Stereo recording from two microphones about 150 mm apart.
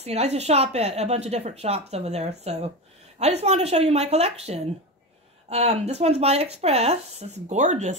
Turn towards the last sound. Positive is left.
turn(degrees=-50)  # may be behind; listen again after turning